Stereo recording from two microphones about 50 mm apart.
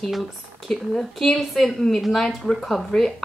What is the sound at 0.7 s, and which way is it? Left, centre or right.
A woman's voice, centre.